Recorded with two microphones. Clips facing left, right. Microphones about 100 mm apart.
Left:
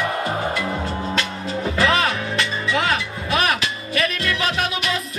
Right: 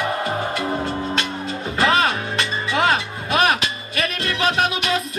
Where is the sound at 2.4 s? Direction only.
30° right (ahead or behind).